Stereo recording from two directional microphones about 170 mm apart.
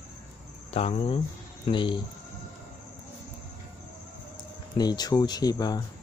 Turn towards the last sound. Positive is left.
turn(degrees=25)  # may be behind; listen again after turning